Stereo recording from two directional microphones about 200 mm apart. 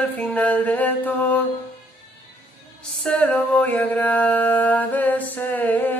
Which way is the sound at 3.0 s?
5° left (ahead or behind).